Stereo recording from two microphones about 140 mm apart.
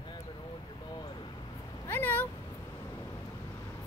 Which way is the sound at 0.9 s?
30° left (ahead or behind).